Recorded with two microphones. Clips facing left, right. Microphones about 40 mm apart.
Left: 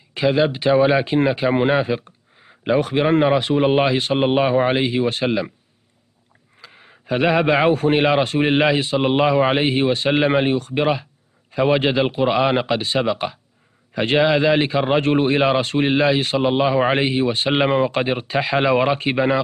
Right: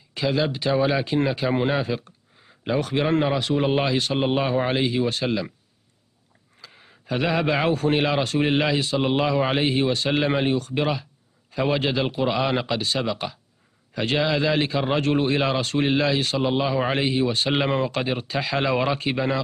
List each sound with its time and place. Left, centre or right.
0.1 s speech: left
6.6 s speech: left